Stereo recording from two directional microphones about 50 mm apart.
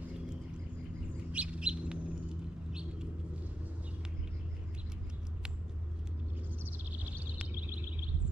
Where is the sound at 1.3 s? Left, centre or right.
Right.